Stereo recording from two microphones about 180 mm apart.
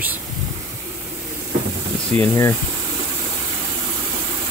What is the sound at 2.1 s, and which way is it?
Speech, 35° right (ahead or behind).